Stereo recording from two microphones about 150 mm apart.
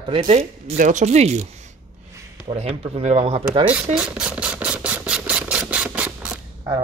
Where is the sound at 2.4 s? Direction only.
40° right (ahead or behind).